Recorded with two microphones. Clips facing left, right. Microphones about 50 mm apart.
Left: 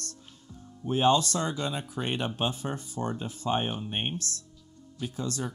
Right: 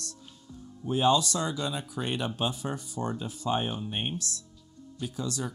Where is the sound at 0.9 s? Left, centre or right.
Left.